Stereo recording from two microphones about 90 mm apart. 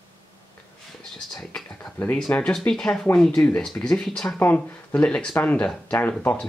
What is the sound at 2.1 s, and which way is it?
Speech, 10° left (ahead or behind).